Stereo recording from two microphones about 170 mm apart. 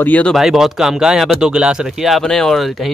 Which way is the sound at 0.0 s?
5° left (ahead or behind).